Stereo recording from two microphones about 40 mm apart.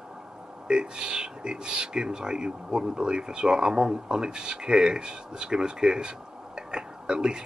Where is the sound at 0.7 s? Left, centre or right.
Right.